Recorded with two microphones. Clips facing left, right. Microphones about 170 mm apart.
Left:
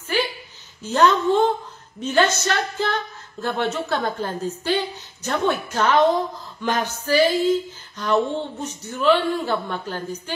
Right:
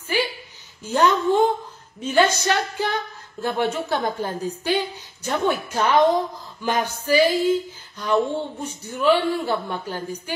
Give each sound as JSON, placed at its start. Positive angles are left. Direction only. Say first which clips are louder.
{"t": 0.8, "sound": "a woman's voice", "louder": "left 1 dB", "side_deg": -10}